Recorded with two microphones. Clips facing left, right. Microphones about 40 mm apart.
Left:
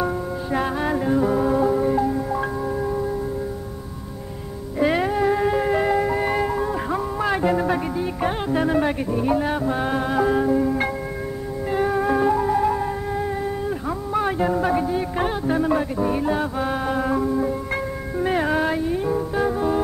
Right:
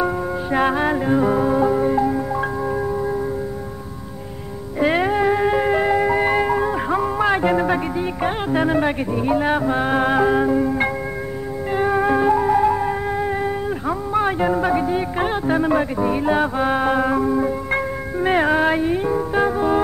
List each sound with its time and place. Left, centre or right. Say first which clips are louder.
0.0 s music: right 3 dB; right
4.7 s music: right 2 dB; centre
9.4 s music: right 4 dB; right
14.1 s speech: right 2 dB; centre
16.3 s music: right 5 dB; right